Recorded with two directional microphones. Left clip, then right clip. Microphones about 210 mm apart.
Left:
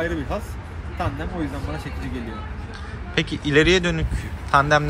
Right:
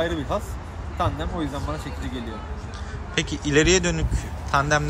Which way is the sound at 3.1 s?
10° right (ahead or behind).